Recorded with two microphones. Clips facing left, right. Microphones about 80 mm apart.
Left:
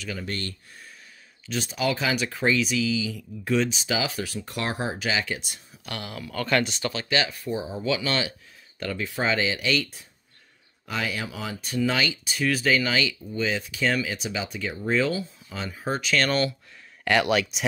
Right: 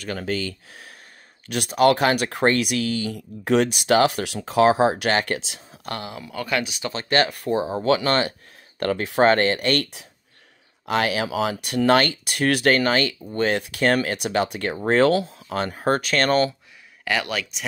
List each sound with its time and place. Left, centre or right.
0.2 s speech: right
1.4 s speech: right
3.4 s speech: right
5.9 s speech: right; by 6.9 s centre
6.9 s speech: right
10.9 s speech: right
12.8 s speech: right
13.3 s speech: right
17.0 s speech: centre